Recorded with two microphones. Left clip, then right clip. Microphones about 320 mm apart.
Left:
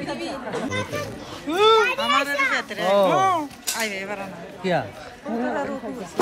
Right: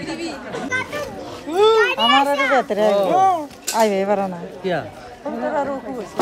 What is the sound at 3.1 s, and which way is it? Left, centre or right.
Speech, centre.